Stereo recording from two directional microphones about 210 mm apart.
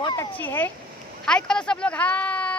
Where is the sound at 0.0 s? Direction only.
20° left (ahead or behind).